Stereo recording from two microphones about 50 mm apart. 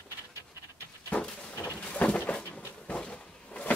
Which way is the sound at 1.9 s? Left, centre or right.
Left.